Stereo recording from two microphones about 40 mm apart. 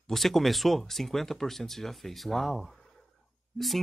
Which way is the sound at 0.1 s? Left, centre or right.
Centre.